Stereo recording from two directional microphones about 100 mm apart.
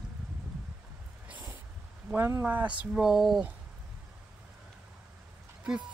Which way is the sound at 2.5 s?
15° right (ahead or behind).